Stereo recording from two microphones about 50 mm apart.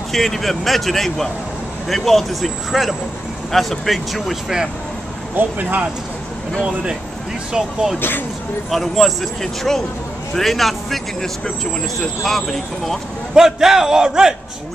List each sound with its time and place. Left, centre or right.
0.1 s speech: centre
5.3 s speech: right
6.6 s speech: centre
7.5 s speech: centre
8.6 s speech: centre
13.3 s speech: centre